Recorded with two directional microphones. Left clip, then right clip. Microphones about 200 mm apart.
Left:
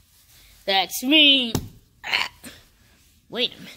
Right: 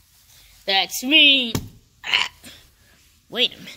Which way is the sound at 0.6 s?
10° left (ahead or behind).